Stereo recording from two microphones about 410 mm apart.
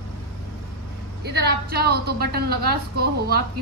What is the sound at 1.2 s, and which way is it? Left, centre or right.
A woman's voice, right.